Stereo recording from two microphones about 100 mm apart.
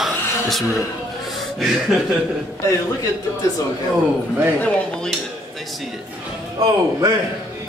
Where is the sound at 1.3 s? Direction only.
5° right (ahead or behind).